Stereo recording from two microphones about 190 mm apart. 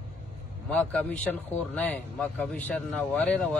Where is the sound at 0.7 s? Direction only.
5° left (ahead or behind).